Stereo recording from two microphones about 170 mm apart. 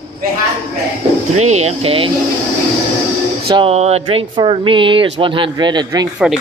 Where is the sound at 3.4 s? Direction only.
35° right (ahead or behind).